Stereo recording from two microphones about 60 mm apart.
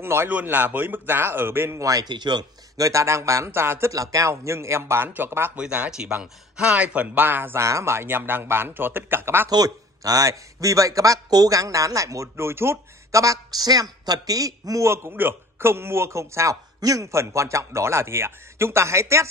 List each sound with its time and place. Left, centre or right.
0.0 s a man's voice: right
0.3 s a man's voice: right
1.8 s a man's voice: right
3.9 s a man's voice: right
5.6 s speech: centre; by 7.5 s right
7.5 s a man's voice: right
9.6 s speech: right
12.4 s a man's voice: right
13.1 s a woman's voice: right
14.0 s speech: right
14.9 s a man's voice: right
16.8 s a man's voice: right